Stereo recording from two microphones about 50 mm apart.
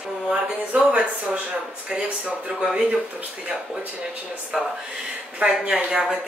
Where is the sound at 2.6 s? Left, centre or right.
Centre.